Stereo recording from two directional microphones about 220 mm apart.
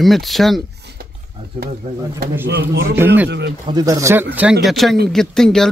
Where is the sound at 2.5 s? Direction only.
45° right (ahead or behind).